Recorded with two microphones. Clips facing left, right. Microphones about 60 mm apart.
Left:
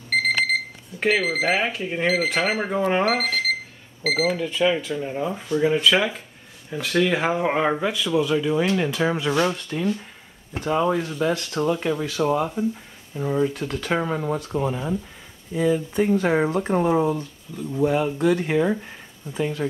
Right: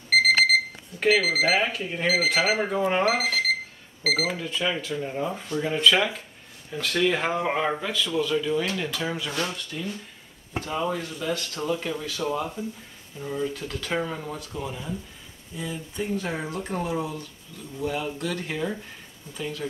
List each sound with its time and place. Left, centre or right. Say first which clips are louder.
0.1 s alarm clock: right 2 dB; centre
0.9 s speech: even; centre
3.1 s speech: left 1 dB; centre; by 9.4 s left
9.4 s speech: left 8 dB; left
11.5 s speech: left 6 dB; left
13.7 s speech: left 5 dB; centre
14.5 s speech: left 8 dB; left